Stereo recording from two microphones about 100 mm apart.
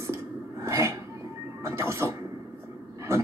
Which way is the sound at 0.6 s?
30° right (ahead or behind).